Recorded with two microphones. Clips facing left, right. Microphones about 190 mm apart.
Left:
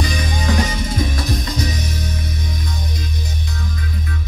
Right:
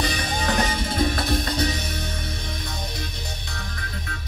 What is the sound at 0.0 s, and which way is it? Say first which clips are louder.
Music: left 3 dB; 60° right (ahead or behind).